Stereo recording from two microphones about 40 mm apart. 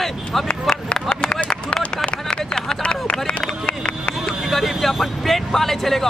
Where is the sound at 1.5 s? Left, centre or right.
Left.